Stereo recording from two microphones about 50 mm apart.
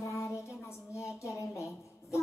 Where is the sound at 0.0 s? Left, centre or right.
Left.